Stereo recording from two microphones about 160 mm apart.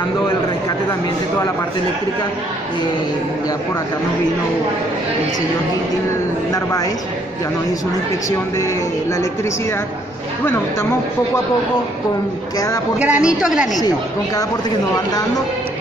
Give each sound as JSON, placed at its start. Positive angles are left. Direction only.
{"t": 6.5, "sound": "speech", "side_deg": 20}
{"t": 12.5, "sound": "speech", "side_deg": 20}
{"t": 13.0, "sound": "a woman's voice", "side_deg": -5}
{"t": 13.7, "sound": "speech", "side_deg": 25}